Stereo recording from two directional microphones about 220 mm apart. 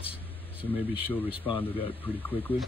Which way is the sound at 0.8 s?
10° left (ahead or behind).